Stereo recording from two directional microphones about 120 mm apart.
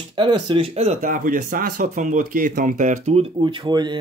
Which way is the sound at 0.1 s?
40° right (ahead or behind).